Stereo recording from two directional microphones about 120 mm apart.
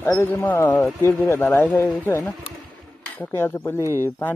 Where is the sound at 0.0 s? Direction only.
20° left (ahead or behind).